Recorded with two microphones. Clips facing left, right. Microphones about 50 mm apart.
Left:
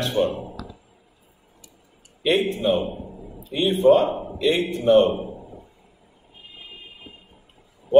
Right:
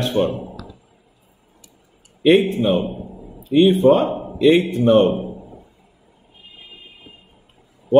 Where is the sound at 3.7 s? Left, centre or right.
Right.